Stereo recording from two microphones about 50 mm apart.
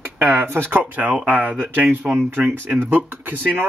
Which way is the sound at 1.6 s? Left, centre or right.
Right.